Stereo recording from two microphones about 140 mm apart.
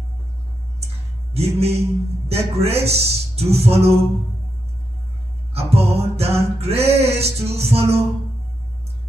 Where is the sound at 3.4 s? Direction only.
45° right (ahead or behind).